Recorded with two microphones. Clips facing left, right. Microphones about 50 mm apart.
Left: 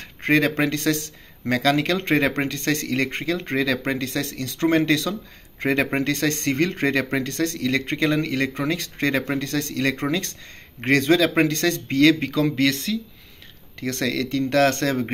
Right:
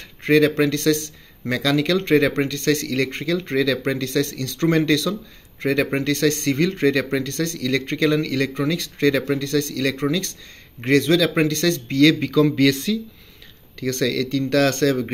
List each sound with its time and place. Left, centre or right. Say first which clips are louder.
0.0 s speech: right 3 dB; left
12.4 s speech: right 4 dB; centre
13.7 s speech: right 3 dB; left